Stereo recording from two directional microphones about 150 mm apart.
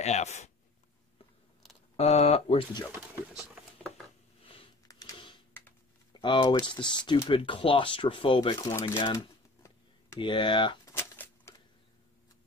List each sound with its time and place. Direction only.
0.0 s speech: 50° left (ahead or behind)
2.0 s speech: 45° left (ahead or behind)
4.8 s a sound: 25° left (ahead or behind)
6.1 s speech: 30° left (ahead or behind)
10.1 s speech: 30° left (ahead or behind)
11.0 s a sound: 15° left (ahead or behind)